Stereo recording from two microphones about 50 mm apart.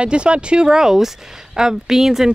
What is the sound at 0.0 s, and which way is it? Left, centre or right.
Speech, right.